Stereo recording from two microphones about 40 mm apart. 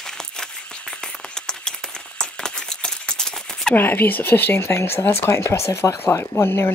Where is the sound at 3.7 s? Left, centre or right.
Left.